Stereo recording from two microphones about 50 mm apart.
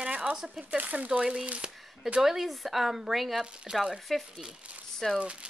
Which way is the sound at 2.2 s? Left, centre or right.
Centre.